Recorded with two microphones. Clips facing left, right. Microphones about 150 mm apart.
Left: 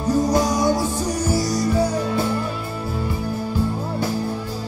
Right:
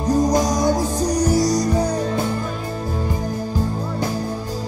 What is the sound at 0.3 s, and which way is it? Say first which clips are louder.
Music: right 1 dB; 40° right (ahead or behind).